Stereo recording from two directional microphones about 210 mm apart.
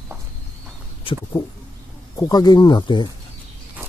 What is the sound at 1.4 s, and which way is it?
Speech, 25° left (ahead or behind).